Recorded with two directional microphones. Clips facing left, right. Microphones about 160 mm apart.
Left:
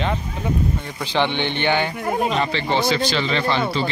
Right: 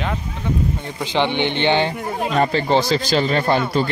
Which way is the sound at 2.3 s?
40° right (ahead or behind).